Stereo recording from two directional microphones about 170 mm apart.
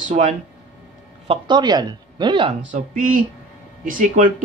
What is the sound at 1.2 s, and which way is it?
Speech, 30° right (ahead or behind).